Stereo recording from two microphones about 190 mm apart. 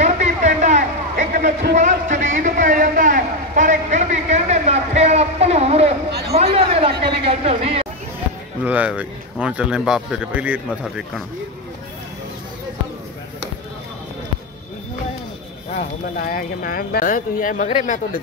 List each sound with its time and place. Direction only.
0.0 s a sound: 40° right (ahead or behind)
8.6 s speech: 5° right (ahead or behind)
16.2 s speech: 50° left (ahead or behind)